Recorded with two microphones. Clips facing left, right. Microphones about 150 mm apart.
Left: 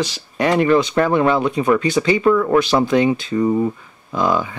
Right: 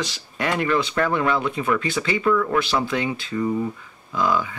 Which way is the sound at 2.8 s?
25° left (ahead or behind).